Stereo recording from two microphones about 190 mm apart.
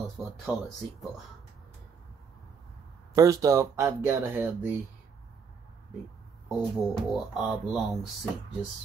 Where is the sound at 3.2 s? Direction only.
20° right (ahead or behind).